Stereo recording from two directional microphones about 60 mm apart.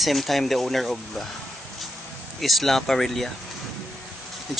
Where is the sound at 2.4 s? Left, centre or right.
Centre.